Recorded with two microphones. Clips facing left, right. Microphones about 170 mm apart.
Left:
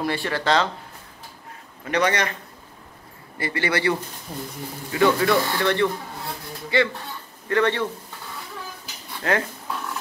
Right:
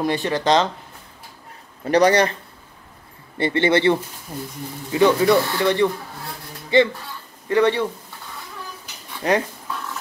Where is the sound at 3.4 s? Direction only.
25° right (ahead or behind).